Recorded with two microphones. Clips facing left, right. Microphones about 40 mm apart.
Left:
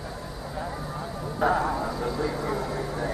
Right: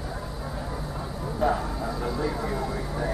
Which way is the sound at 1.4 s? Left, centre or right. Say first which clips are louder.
Left 2 dB; centre.